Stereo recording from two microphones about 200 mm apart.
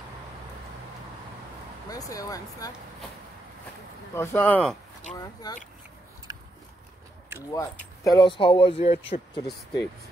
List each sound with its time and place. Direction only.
1.9 s speech: 15° left (ahead or behind)
4.1 s speech: 10° left (ahead or behind)
7.3 s speech: 15° left (ahead or behind); by 9.4 s 30° left (ahead or behind)